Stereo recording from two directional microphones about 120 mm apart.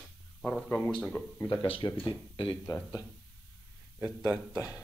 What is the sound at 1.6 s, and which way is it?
Speech, 50° left (ahead or behind).